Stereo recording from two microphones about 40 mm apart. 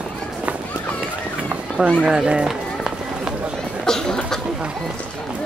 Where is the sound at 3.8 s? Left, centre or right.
Centre.